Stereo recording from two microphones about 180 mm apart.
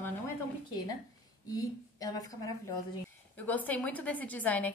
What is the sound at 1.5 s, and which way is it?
A woman's voice, 20° left (ahead or behind).